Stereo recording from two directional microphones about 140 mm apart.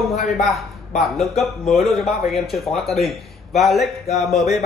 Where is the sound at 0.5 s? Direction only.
Centre (ahead or behind).